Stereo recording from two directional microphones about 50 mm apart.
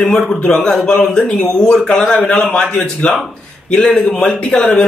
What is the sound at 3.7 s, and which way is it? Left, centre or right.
Speech, centre.